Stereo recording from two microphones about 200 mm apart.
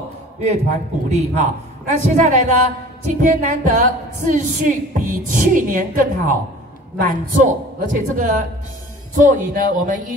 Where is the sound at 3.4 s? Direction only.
40° right (ahead or behind).